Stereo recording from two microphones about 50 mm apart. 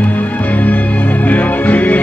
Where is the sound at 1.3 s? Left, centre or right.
Left.